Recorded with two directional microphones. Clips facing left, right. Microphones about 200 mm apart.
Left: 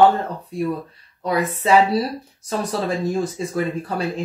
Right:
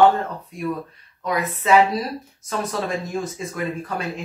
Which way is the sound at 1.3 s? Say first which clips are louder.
Left 2 dB; 35° left (ahead or behind).